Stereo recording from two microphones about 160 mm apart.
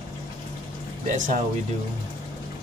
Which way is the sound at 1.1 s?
50° right (ahead or behind).